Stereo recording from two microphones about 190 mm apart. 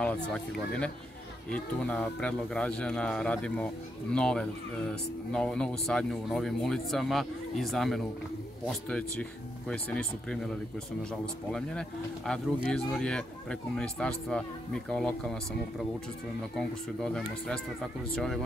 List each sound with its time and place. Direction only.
0.0 s speech: 5° left (ahead or behind)
12.6 s speech: 5° left (ahead or behind)
16.5 s speech: 5° left (ahead or behind)